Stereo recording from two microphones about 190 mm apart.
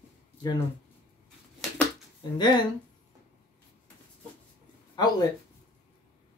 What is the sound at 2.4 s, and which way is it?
Speech, 20° left (ahead or behind).